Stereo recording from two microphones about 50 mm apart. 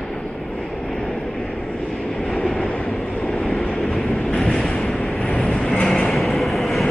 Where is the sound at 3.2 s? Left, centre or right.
Centre.